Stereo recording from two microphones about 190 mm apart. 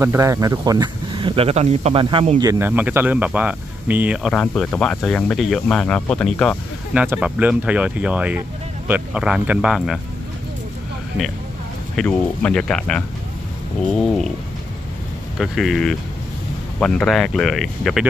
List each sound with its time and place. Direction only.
0.0 s speech: 15° right (ahead or behind)
2.4 s speech: 10° right (ahead or behind)
4.3 s speech: 5° left (ahead or behind)
6.9 s speech: 5° right (ahead or behind)
12.0 s speech: 5° left (ahead or behind)
15.3 s speech: centre (ahead or behind)